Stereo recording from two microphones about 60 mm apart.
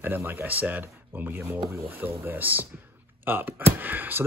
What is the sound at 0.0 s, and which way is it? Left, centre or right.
Speech, right.